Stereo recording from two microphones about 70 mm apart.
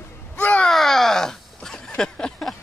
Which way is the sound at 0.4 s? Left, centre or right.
Left.